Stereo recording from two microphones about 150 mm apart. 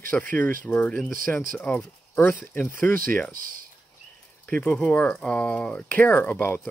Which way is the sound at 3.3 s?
70° right (ahead or behind).